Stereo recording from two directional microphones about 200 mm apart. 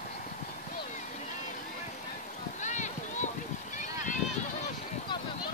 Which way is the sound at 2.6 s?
35° left (ahead or behind).